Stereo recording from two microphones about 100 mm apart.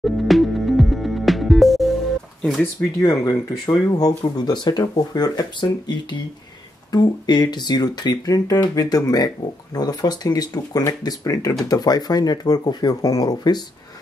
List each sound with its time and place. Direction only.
0.0 s music: centre (ahead or behind)
3.0 s speech: 35° left (ahead or behind)